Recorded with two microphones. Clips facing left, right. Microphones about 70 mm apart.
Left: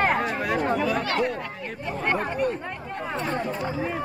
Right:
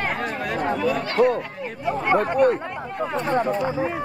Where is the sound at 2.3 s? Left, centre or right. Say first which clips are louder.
Right 8 dB; right.